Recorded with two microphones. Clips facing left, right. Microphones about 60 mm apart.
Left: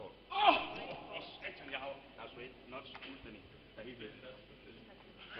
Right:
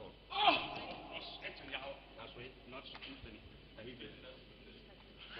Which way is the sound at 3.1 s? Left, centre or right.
Centre.